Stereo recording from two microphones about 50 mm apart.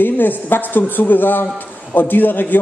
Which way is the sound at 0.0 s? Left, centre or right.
Left.